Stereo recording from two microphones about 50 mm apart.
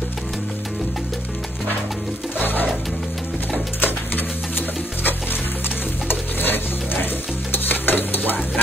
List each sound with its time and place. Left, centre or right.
3.8 s music: left
6.0 s stir: left